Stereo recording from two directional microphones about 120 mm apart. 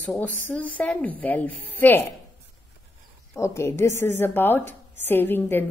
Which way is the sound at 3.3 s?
25° left (ahead or behind).